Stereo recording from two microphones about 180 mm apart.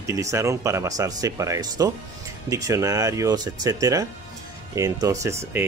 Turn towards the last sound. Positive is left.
turn(degrees=-15)  # may be behind; listen again after turning